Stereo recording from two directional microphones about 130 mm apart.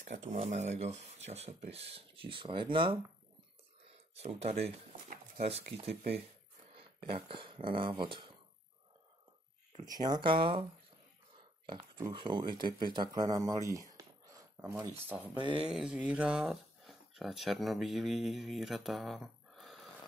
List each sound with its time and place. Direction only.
0.0 s speech: 65° right (ahead or behind); by 3.0 s 40° right (ahead or behind)
3.8 s speech: 50° right (ahead or behind)
9.8 s speech: 30° right (ahead or behind)
12.1 s speech: 35° right (ahead or behind)
13.7 s a sound: 25° right (ahead or behind)
15.0 s speech: 10° right (ahead or behind)
15.3 s speech: 40° right (ahead or behind)
15.6 s speech: 5° right (ahead or behind)